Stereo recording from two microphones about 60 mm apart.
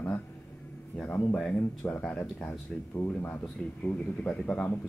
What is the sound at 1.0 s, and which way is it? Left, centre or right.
Speech, centre.